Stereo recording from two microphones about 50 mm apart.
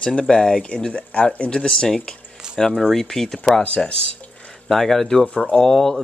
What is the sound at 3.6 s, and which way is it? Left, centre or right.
Speech, left.